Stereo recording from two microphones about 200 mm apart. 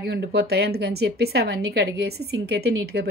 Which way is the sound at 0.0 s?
55° right (ahead or behind).